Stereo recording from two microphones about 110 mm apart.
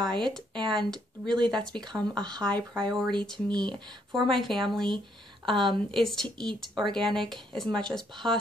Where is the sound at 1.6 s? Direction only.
5° left (ahead or behind).